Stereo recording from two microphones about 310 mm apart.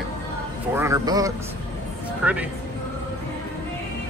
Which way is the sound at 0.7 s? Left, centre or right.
Centre.